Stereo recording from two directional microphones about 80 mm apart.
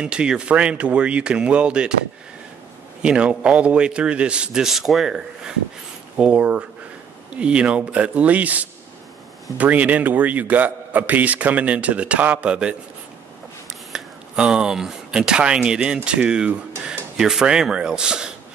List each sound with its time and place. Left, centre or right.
0.0 s a man's voice: centre
3.0 s a man's voice: centre
13.9 s a man's voice: centre